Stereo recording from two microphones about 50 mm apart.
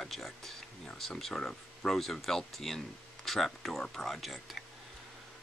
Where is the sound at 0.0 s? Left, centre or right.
Centre.